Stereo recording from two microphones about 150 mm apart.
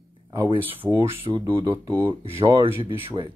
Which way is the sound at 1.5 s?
35° right (ahead or behind).